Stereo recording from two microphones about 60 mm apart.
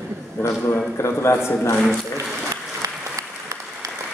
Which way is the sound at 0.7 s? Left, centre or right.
Left.